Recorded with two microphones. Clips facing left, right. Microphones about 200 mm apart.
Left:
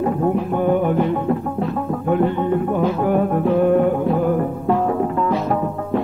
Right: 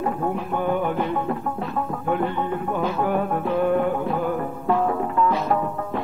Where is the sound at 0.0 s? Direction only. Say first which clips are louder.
Left 6 dB; 35° left (ahead or behind).